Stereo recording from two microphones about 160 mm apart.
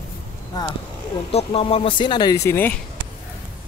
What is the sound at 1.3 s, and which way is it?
Speech, 35° left (ahead or behind).